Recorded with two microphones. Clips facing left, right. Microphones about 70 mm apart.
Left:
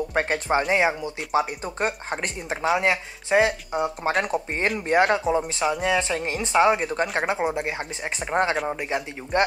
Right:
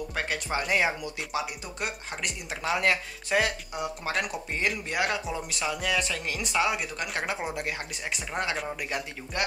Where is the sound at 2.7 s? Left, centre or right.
Left.